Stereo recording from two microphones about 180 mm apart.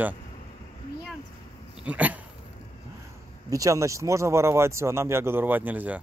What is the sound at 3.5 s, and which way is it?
Speech, 20° right (ahead or behind).